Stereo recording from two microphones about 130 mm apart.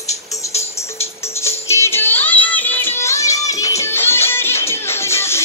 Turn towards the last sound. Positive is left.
turn(degrees=20)  # may be behind; listen again after turning